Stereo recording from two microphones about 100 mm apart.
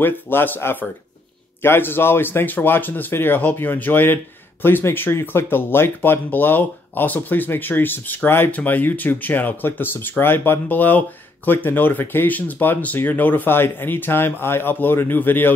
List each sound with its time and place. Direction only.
0.0 s speech: 20° left (ahead or behind)